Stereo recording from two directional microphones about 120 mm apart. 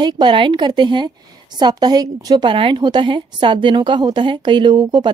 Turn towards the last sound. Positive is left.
turn(degrees=-40)  # may be behind; listen again after turning